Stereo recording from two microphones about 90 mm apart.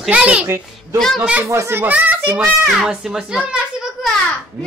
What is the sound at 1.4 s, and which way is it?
Speech, 35° right (ahead or behind).